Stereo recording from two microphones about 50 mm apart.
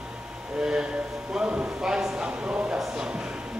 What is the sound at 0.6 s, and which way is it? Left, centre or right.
Speech, centre.